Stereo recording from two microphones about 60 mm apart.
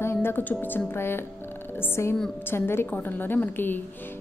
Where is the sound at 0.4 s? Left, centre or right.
Left.